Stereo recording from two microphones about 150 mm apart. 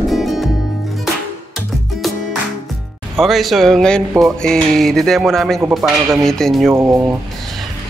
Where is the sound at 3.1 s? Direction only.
Centre (ahead or behind).